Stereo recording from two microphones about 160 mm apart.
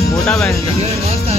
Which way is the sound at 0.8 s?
40° right (ahead or behind).